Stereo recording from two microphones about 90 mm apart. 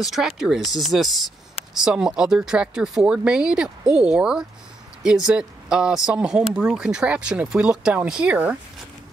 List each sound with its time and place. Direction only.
0.0 s speech: 5° right (ahead or behind)